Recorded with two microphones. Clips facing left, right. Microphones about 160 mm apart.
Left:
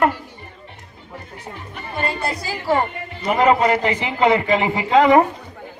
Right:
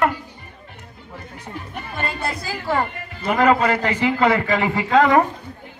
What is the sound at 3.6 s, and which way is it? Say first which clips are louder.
A man's voice: left 1 dB; 15° left (ahead or behind).